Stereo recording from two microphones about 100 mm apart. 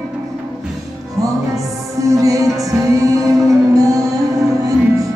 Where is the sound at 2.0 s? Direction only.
35° right (ahead or behind).